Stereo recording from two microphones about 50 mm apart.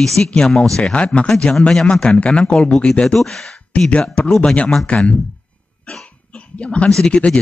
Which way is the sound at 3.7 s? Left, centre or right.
Left.